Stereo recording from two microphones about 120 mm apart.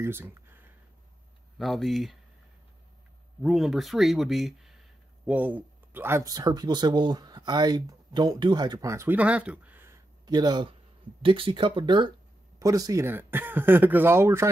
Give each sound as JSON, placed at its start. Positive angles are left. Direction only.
{"t": 0.0, "sound": "speech", "side_deg": -20}
{"t": 1.6, "sound": "speech", "side_deg": 0}
{"t": 3.4, "sound": "speech", "side_deg": 0}
{"t": 5.3, "sound": "speech", "side_deg": -15}
{"t": 6.3, "sound": "speech", "side_deg": -35}
{"t": 8.9, "sound": "speech", "side_deg": -15}
{"t": 10.2, "sound": "speech", "side_deg": -35}
{"t": 11.2, "sound": "speech", "side_deg": -50}
{"t": 12.5, "sound": "speech", "side_deg": -30}